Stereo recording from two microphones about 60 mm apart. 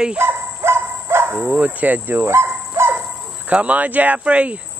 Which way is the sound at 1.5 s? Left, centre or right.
Right.